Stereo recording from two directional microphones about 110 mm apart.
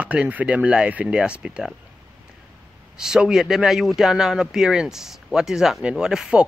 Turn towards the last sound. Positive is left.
turn(degrees=-5)  # may be behind; listen again after turning